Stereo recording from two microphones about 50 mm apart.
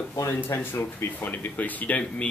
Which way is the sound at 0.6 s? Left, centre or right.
Left.